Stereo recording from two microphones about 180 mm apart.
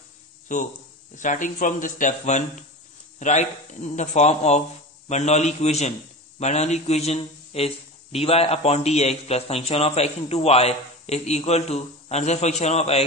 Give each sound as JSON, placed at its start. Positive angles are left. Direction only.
{"t": 0.5, "sound": "a man's voice", "side_deg": 45}